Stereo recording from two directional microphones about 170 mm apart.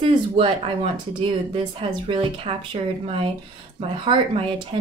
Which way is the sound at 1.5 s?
30° right (ahead or behind).